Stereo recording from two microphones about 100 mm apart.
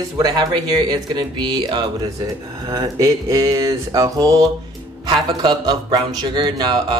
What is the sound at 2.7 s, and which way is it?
Mantra, 35° right (ahead or behind).